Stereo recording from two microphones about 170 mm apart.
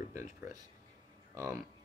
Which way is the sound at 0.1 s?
15° right (ahead or behind).